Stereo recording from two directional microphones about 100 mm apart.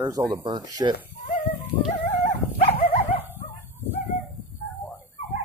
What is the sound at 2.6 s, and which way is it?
Dog, 65° left (ahead or behind).